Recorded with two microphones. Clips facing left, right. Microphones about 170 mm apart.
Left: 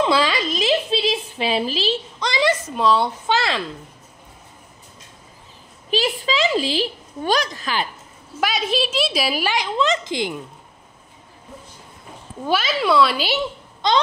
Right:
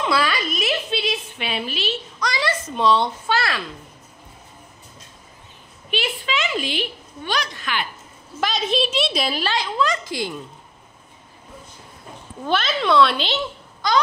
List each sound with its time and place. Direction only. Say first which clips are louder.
0.0 s a sound: left 3 dB; 20° left (ahead or behind)
2.7 s speech: right 4 dB; 5° left (ahead or behind)
3.3 s speech: left 2 dB; 20° left (ahead or behind)
5.9 s a sound: left 4 dB; 35° left (ahead or behind)
8.4 s a woman's voice: even; 10° left (ahead or behind)
12.4 s speech: left 1 dB; 5° left (ahead or behind)
13.8 s speech: left 1 dB; 25° left (ahead or behind)